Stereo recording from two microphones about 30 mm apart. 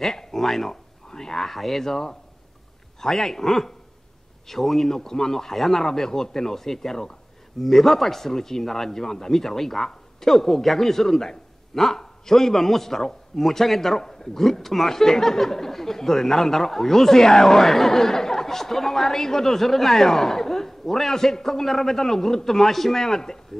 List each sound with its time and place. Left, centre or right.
0.0 s speech: centre
1.0 s speech: centre
1.9 s speech: centre